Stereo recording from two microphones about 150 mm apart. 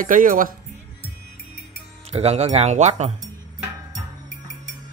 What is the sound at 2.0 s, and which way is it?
Speech, 45° right (ahead or behind).